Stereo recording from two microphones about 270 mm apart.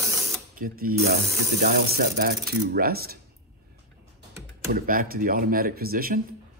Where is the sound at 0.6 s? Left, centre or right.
Right.